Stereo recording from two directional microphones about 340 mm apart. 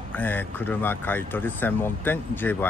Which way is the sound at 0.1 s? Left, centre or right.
Centre.